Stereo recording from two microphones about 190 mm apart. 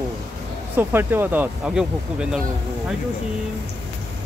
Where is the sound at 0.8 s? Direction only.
10° right (ahead or behind).